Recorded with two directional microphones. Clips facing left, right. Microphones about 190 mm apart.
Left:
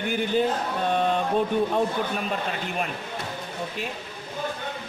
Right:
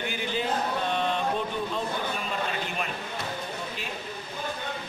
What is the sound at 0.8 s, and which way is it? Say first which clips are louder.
Music: left 8 dB; 45° left (ahead or behind).